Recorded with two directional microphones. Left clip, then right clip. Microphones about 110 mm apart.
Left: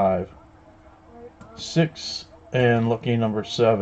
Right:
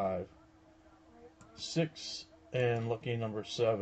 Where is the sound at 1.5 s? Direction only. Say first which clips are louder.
Left 11 dB; 40° right (ahead or behind).